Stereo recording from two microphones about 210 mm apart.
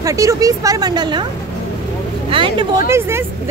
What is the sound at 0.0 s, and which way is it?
A woman's voice, 15° right (ahead or behind).